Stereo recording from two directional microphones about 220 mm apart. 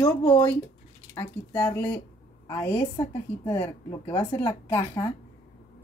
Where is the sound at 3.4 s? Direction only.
10° left (ahead or behind).